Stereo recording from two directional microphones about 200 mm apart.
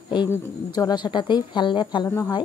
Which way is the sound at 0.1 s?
20° left (ahead or behind).